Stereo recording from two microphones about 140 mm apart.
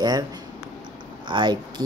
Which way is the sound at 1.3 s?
35° right (ahead or behind).